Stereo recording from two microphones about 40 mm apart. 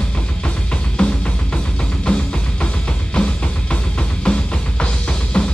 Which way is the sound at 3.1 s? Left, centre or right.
Left.